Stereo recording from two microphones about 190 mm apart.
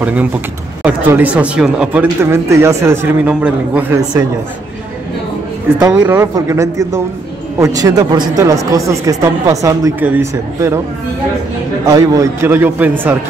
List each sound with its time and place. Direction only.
0.0 s speech: 10° right (ahead or behind)
5.9 s speech: 10° right (ahead or behind)
11.8 s speech: 15° right (ahead or behind)